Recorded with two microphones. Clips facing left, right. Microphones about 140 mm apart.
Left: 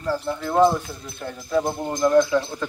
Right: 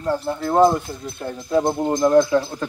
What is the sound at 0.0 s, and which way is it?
Speech, 25° right (ahead or behind).